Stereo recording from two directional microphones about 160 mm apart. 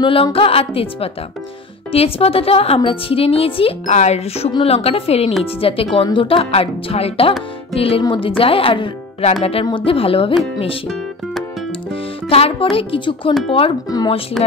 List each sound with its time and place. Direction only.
0.0 s a woman's voice: 35° left (ahead or behind)
3.8 s a woman's voice: 45° left (ahead or behind)
11.9 s music: 35° left (ahead or behind)
12.7 s a woman's voice: 35° left (ahead or behind)
13.8 s speech: 25° left (ahead or behind)